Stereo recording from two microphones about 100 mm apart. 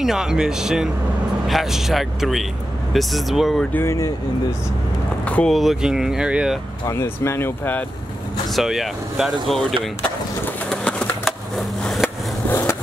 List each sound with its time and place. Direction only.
0.0 s speech: 5° right (ahead or behind)
3.7 s speech: 30° left (ahead or behind)
5.2 s vehicle: 10° left (ahead or behind)
5.5 s speech: centre (ahead or behind)
6.9 s speech: 30° left (ahead or behind)
8.5 s speech: centre (ahead or behind)
10.7 s a sound: 10° left (ahead or behind)
12.4 s skateboard: 25° left (ahead or behind)